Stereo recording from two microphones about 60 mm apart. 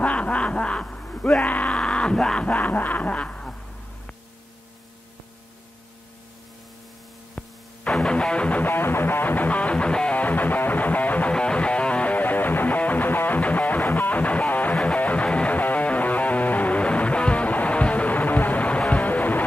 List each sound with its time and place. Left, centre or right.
0.0 s snicker: left
1.4 s music: left
1.8 s a sound: centre
2.4 s a sound: left
7.9 s music: centre
8.6 s music: left